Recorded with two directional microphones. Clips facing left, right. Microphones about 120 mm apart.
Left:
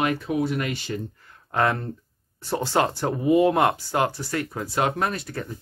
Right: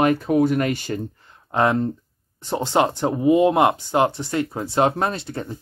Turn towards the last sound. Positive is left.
turn(degrees=-25)  # may be behind; listen again after turning